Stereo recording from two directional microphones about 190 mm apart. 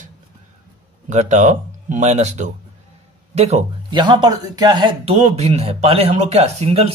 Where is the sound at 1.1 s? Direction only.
40° right (ahead or behind).